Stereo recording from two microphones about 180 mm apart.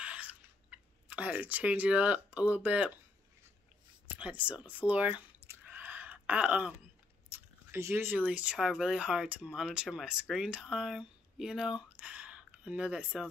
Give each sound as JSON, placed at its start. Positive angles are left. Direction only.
{"t": 0.0, "sound": "chewing", "side_deg": -5}
{"t": 4.1, "sound": "speech", "side_deg": -5}
{"t": 5.5, "sound": "a sound", "side_deg": -10}
{"t": 8.3, "sound": "speech", "side_deg": -5}